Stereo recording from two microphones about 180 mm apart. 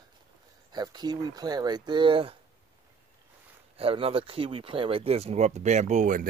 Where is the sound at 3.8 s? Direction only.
30° right (ahead or behind).